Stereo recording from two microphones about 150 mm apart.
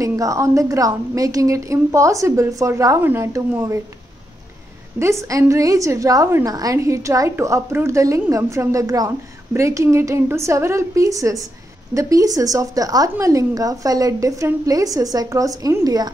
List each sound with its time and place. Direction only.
0.0 s a woman's voice: 20° right (ahead or behind)
4.9 s a woman's voice: 20° right (ahead or behind)